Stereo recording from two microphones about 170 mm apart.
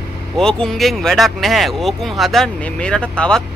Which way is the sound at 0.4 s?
5° left (ahead or behind).